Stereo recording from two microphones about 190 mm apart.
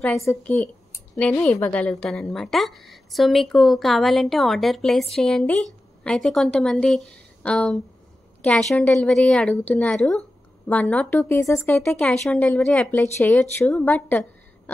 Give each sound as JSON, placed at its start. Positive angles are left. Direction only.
{"t": 0.2, "sound": "a woman's voice", "side_deg": 15}